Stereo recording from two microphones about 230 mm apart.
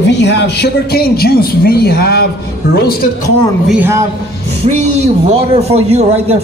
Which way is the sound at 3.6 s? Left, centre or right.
Centre.